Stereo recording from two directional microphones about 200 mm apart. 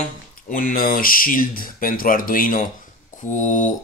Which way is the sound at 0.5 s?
45° left (ahead or behind).